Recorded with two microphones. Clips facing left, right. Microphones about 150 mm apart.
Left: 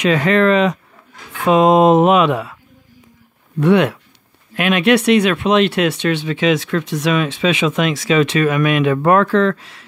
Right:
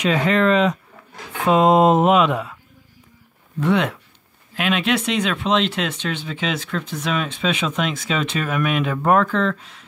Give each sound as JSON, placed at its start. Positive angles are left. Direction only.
{"t": 0.0, "sound": "speech", "side_deg": 75}
{"t": 1.5, "sound": "a sound", "side_deg": 90}
{"t": 3.5, "sound": "speech", "side_deg": 65}